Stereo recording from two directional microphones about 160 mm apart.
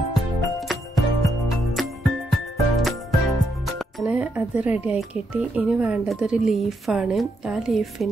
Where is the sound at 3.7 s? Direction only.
Centre (ahead or behind).